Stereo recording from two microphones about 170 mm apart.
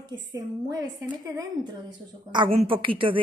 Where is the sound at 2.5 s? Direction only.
30° right (ahead or behind).